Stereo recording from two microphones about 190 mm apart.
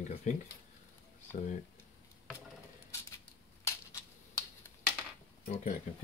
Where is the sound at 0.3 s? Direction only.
40° left (ahead or behind).